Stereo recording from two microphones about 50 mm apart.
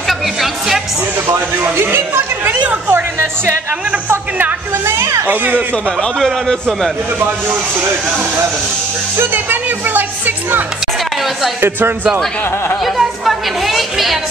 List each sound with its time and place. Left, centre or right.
0.1 s music: centre
1.8 s a sound: right
2.9 s speech: right
4.8 s a child's voice: right
5.2 s speech: right
6.1 s a man's voice: centre
7.2 s speech: right
9.1 s music: right
12.8 s chatter: centre